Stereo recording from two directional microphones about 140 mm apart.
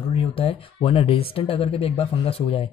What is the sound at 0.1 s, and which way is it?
Speech, 40° left (ahead or behind).